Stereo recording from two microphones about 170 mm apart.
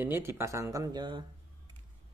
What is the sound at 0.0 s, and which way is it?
Speech, 15° right (ahead or behind).